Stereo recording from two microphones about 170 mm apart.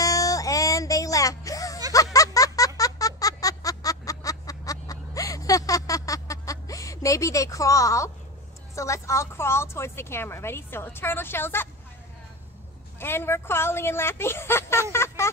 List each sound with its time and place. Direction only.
0.0 s music: 20° left (ahead or behind)
2.1 s a sound: 20° left (ahead or behind)
8.7 s a woman's voice: 15° left (ahead or behind)
13.0 s a woman's voice: 15° left (ahead or behind)